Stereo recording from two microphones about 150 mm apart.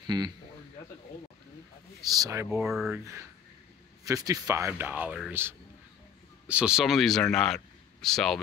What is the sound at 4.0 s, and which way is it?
Speech, 25° right (ahead or behind).